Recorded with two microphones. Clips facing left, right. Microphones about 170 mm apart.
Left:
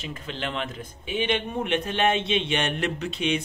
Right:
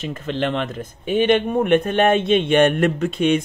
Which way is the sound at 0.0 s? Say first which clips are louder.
Right 9 dB; 45° right (ahead or behind).